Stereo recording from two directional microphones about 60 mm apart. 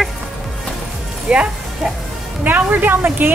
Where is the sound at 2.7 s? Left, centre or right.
Right.